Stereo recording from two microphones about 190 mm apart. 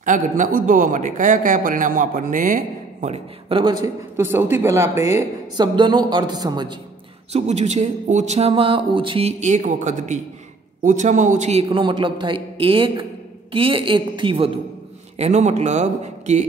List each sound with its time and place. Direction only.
0.0 s a man's voice: 45° right (ahead or behind)
3.1 s a man's voice: 30° right (ahead or behind)
4.2 s a woman's voice: 10° right (ahead or behind)
5.8 s a man's voice: 25° right (ahead or behind)
7.3 s a man's voice: 35° right (ahead or behind)